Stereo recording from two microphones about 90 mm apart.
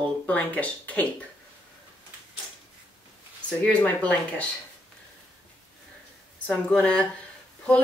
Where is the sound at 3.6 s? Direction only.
15° left (ahead or behind).